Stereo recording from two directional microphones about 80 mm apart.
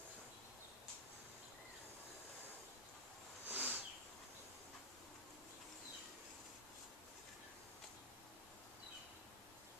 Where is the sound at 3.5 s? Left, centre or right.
Right.